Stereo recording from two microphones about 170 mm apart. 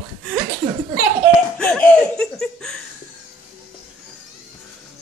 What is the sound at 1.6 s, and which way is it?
Laughter, 5° left (ahead or behind).